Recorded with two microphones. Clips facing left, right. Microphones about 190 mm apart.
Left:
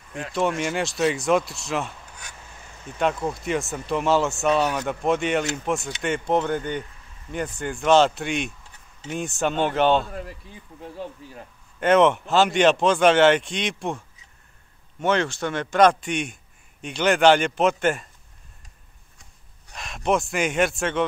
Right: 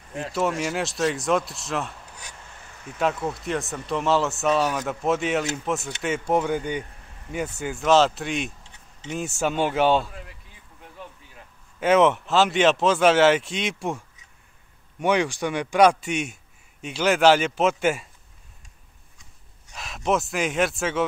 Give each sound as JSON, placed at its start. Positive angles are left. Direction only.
{"t": 0.3, "sound": "speech", "side_deg": -5}
{"t": 3.0, "sound": "a man's voice", "side_deg": 0}
{"t": 10.8, "sound": "speech", "side_deg": 35}
{"t": 11.8, "sound": "a man's voice", "side_deg": -5}
{"t": 19.7, "sound": "speech", "side_deg": 0}